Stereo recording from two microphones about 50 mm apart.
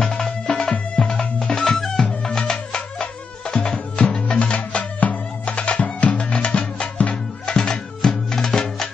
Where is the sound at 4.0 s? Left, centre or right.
Left.